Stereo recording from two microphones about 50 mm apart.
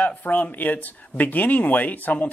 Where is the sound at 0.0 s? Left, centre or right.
Left.